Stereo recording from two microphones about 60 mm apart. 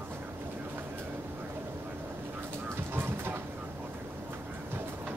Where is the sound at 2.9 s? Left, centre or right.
Right.